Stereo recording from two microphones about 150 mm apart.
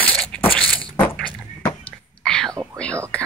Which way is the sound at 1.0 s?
10° left (ahead or behind).